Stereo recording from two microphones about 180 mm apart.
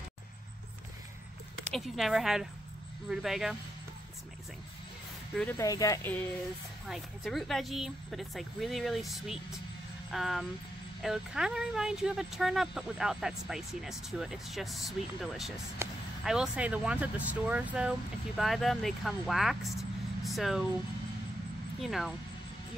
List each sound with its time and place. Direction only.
1.7 s speech: centre (ahead or behind)
5.3 s speech: 5° left (ahead or behind)
5.6 s speech: 20° left (ahead or behind)
6.9 s speech: centre (ahead or behind)
21.8 s speech: centre (ahead or behind)